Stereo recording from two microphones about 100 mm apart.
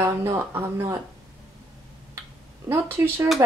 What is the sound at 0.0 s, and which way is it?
Speech, 25° right (ahead or behind).